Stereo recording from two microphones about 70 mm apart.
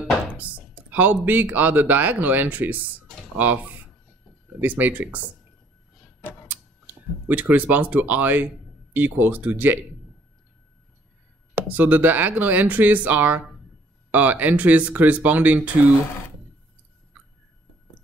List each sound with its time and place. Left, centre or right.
0.4 s speech: right
7.2 s speech: right
11.5 s speech: right